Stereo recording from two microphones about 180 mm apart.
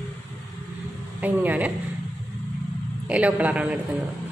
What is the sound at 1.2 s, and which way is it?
Speech, 10° right (ahead or behind).